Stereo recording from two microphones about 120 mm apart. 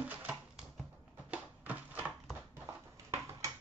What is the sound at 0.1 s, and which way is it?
Typewriter, 10° right (ahead or behind).